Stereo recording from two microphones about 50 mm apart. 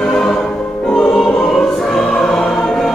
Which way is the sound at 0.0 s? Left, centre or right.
Centre.